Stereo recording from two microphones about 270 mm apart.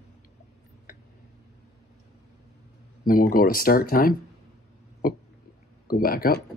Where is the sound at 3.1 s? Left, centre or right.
Left.